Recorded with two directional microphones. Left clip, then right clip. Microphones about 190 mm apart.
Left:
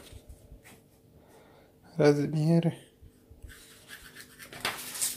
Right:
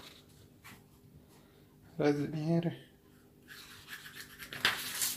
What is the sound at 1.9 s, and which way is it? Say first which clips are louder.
Speech: left 7 dB; 40° left (ahead or behind).